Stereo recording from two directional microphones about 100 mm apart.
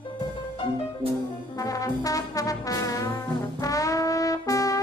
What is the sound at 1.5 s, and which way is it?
Trombone, 35° left (ahead or behind).